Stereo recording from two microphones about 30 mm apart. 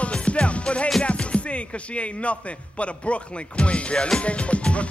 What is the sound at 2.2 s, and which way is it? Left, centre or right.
Speech, left.